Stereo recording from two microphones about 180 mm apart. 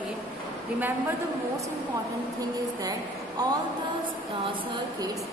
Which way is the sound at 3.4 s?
20° right (ahead or behind).